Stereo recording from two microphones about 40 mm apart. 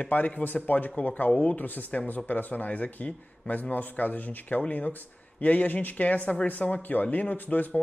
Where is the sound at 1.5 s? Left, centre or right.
Left.